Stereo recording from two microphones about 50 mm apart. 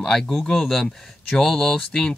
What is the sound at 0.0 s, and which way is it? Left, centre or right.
Speech, centre.